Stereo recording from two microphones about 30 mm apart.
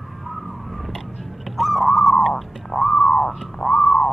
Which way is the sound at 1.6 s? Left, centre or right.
Centre.